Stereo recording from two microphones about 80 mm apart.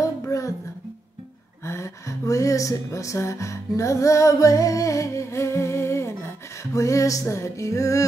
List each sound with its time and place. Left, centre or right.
0.2 s music: left
1.6 s speech: left